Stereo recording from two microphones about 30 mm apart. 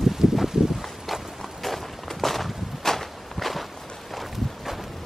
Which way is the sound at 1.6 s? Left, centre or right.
Centre.